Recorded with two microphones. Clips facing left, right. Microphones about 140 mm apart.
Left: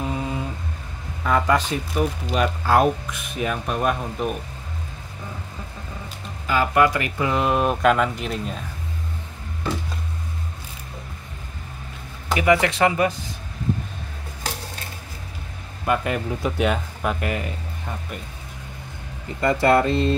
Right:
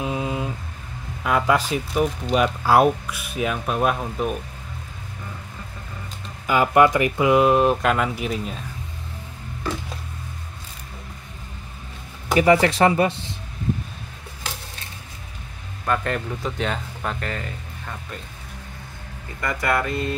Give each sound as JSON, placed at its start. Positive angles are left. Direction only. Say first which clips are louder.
{"t": 0.0, "sound": "a sound", "louder": "right 1 dB", "side_deg": -10}
{"t": 1.2, "sound": "speech", "louder": "even", "side_deg": -10}
{"t": 6.4, "sound": "speech", "louder": "right 2 dB", "side_deg": -15}
{"t": 7.4, "sound": "speech", "louder": "right 1 dB", "side_deg": 0}
{"t": 12.4, "sound": "speech", "louder": "right 2 dB", "side_deg": -35}
{"t": 15.9, "sound": "speech", "louder": "left 1 dB", "side_deg": 10}
{"t": 19.4, "sound": "speech", "louder": "left 6 dB", "side_deg": 30}